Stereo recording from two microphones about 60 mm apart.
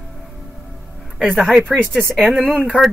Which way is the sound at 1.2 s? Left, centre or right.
Right.